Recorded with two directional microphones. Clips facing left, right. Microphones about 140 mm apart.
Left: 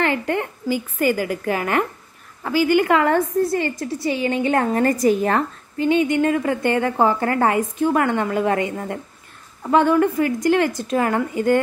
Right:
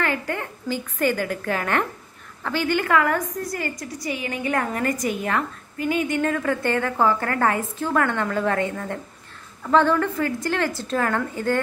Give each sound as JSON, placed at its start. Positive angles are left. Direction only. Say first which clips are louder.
{"t": 0.0, "sound": "a woman's voice", "louder": "left 5 dB", "side_deg": 20}
{"t": 0.7, "sound": "a woman's voice", "louder": "left 2 dB", "side_deg": 10}
{"t": 2.9, "sound": "a woman's voice", "louder": "left 4 dB", "side_deg": 25}